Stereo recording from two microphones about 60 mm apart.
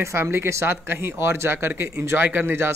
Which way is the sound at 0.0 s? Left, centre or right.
Right.